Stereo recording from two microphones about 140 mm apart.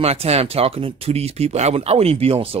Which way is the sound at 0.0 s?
45° right (ahead or behind).